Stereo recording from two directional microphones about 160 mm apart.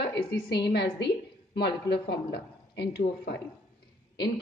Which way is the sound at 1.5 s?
90° left.